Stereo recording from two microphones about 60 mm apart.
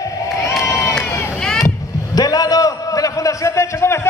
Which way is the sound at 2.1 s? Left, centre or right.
Left.